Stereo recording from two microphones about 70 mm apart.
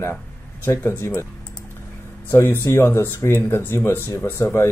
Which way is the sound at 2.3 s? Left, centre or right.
Left.